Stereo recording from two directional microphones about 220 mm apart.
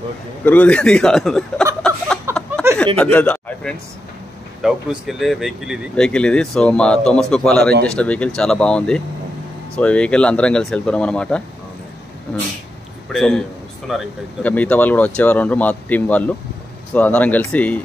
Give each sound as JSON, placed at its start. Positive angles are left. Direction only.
{"t": 0.5, "sound": "speech", "side_deg": 5}
{"t": 1.8, "sound": "a sound", "side_deg": 5}
{"t": 2.5, "sound": "chuckle", "side_deg": -10}
{"t": 3.0, "sound": "speech", "side_deg": 5}
{"t": 13.1, "sound": "speech", "side_deg": 0}